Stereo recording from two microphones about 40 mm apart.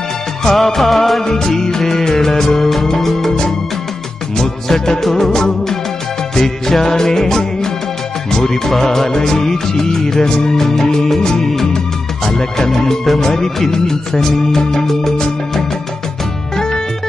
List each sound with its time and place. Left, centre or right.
0.4 s music of bollywood: centre
1.3 s music: centre